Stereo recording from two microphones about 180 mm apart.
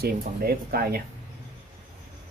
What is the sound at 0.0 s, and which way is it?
Speech, 60° right (ahead or behind).